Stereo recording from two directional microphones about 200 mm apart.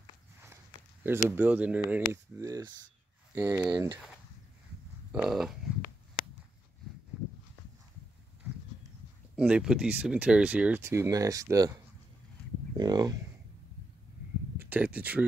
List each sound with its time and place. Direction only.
1.0 s speech: 10° right (ahead or behind)
5.1 s a sound: centre (ahead or behind)
9.3 s speech: 5° right (ahead or behind)
12.7 s speech: 20° right (ahead or behind)
14.6 s speech: 10° right (ahead or behind)